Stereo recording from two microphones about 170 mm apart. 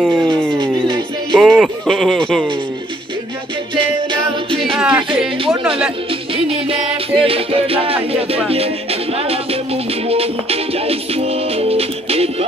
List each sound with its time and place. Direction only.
0.0 s music: centre (ahead or behind)
1.3 s speech: centre (ahead or behind)
4.6 s music: 5° right (ahead or behind)
6.3 s music: 30° right (ahead or behind)